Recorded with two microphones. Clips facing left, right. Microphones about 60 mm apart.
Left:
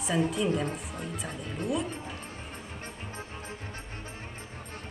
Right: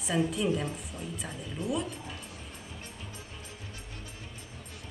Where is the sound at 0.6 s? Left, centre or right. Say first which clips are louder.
Left 3 dB; left.